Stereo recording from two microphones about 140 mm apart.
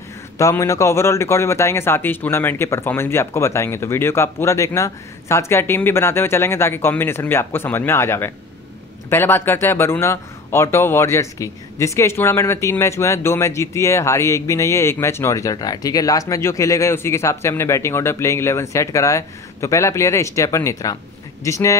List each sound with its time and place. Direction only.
0.4 s a man's voice: 20° left (ahead or behind)